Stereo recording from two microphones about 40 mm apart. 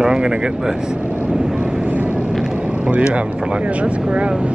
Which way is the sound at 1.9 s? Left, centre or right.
Right.